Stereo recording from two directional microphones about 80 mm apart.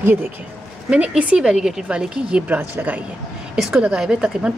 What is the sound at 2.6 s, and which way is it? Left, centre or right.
Speech, right.